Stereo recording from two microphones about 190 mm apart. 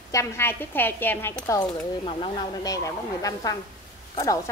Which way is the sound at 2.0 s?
25° left (ahead or behind).